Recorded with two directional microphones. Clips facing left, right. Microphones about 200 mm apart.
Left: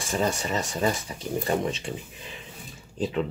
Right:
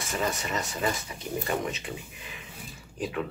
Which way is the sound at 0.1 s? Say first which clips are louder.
Left 4 dB; 30° left (ahead or behind).